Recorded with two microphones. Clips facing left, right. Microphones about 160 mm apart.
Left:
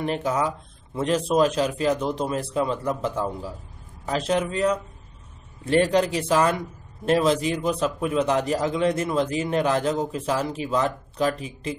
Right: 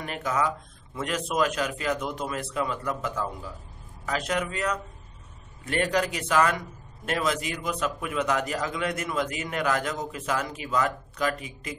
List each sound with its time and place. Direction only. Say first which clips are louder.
0.0 s a man's voice: left 4 dB; 30° left (ahead or behind)